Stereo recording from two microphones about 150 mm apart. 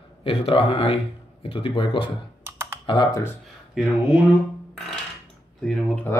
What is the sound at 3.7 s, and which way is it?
Speech, centre (ahead or behind).